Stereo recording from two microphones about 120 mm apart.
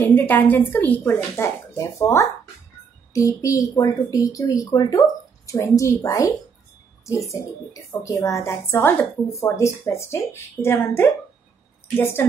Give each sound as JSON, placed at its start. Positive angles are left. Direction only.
{"t": 0.0, "sound": "speech", "side_deg": 15}